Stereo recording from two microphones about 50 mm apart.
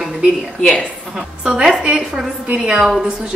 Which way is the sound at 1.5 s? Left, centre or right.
Centre.